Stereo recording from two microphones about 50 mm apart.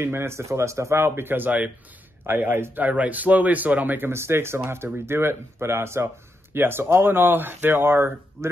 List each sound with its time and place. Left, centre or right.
0.0 s speech: right
1.0 s speech: right
2.8 s speech: right
4.1 s speech: right